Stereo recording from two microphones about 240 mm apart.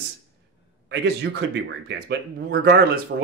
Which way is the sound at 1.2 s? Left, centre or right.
Right.